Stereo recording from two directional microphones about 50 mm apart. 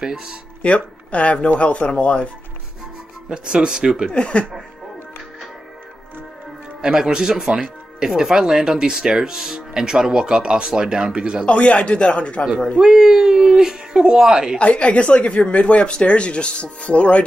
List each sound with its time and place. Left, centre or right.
0.0 s speech: centre
0.6 s speech: left
3.3 s speech: centre
4.1 s speech: left
6.8 s speech: centre
11.4 s speech: left
12.7 s speech: centre
14.6 s speech: left